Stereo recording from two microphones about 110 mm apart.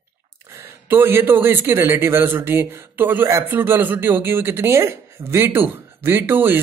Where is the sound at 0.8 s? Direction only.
20° right (ahead or behind).